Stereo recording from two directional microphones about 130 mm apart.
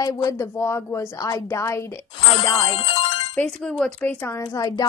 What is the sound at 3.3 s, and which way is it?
Speech, 10° left (ahead or behind).